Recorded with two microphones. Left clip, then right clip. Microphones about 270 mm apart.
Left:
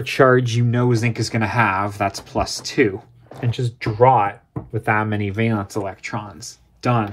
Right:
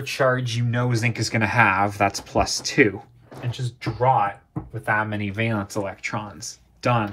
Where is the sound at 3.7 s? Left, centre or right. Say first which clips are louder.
Left 5 dB; left.